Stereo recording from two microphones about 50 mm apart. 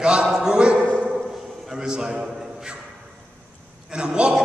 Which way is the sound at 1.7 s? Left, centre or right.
Centre.